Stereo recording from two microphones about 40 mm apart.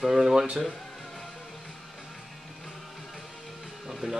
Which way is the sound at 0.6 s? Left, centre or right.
Centre.